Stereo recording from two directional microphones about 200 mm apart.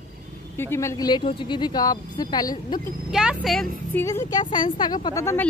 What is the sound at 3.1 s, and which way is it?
Speech, 5° right (ahead or behind).